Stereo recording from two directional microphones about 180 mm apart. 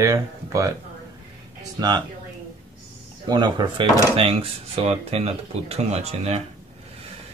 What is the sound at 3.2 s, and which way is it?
Speech, 25° right (ahead or behind).